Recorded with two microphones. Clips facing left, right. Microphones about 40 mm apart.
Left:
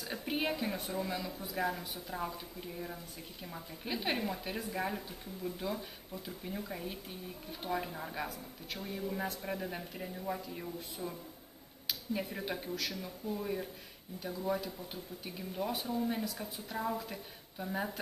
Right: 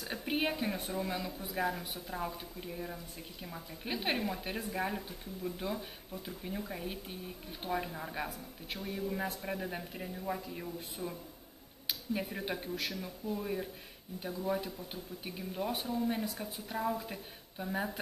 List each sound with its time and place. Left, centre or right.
0.0 s speech: centre
13.0 s speech: centre